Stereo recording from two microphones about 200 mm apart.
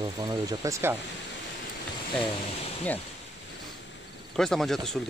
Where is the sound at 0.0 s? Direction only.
20° right (ahead or behind).